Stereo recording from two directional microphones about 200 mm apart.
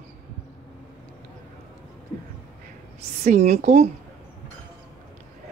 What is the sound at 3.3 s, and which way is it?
Speech, 35° right (ahead or behind).